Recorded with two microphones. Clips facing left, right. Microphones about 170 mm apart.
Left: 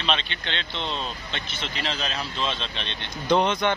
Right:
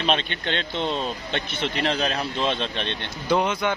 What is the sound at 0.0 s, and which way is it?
Speech, 50° right (ahead or behind).